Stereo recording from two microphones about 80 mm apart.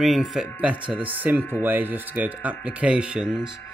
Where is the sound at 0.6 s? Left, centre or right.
Centre.